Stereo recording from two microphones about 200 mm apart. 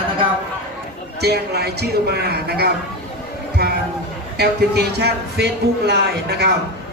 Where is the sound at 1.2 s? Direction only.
55° right (ahead or behind).